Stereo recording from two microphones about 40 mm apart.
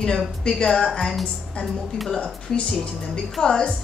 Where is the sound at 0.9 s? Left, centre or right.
Centre.